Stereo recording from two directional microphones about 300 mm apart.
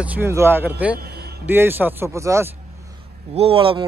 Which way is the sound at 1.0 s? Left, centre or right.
Right.